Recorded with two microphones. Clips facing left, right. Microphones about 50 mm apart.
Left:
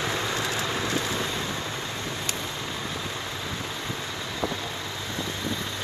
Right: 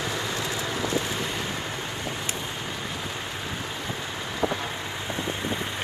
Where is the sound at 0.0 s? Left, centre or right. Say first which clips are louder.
Left 1 dB; left.